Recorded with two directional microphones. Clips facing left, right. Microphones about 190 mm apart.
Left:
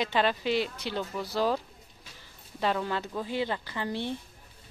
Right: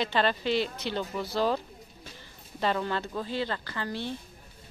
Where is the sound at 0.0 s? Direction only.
10° left (ahead or behind).